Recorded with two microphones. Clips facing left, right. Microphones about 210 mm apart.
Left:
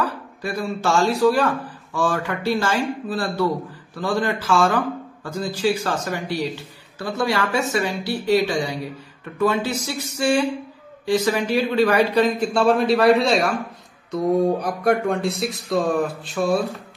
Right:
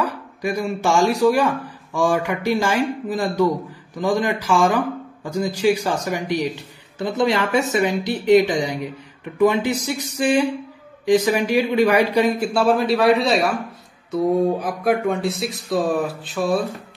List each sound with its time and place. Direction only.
0.0 s a man's voice: 15° right (ahead or behind)